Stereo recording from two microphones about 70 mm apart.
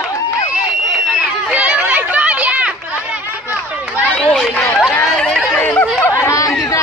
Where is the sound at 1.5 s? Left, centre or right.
Right.